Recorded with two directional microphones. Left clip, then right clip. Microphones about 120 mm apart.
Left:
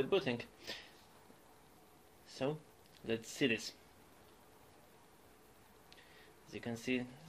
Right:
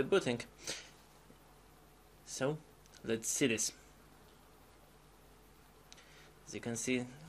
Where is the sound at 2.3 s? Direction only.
35° right (ahead or behind).